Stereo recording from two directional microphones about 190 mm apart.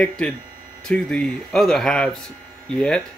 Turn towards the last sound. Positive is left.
turn(degrees=5)  # may be behind; listen again after turning